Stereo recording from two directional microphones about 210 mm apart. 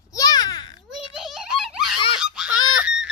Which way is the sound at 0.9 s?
Centre (ahead or behind).